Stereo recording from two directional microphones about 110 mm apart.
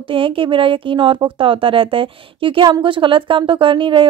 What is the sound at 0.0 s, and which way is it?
Speech, 55° right (ahead or behind).